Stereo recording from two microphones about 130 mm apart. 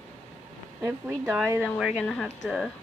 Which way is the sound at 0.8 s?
20° right (ahead or behind).